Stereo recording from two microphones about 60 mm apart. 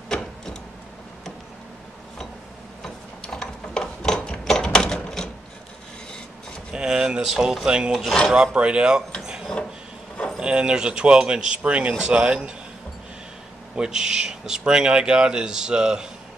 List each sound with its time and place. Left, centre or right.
2.8 s tick-tock: centre
6.7 s a sound: centre
7.2 s speech: centre
7.9 s speech: centre
8.3 s speech: centre
10.4 s speech: centre
13.7 s speech: centre